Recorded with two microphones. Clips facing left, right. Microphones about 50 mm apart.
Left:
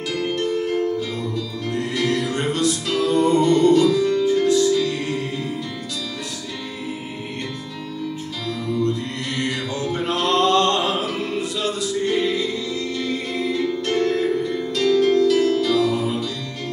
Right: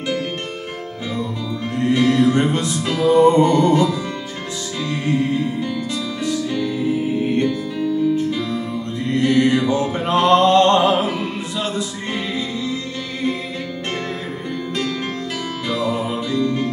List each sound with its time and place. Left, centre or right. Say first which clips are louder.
1.8 s music: right 7 dB; right
9.2 s mantra: right 10 dB; right
14.8 s music: left 11 dB; right